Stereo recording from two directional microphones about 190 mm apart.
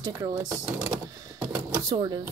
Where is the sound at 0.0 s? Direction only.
15° right (ahead or behind).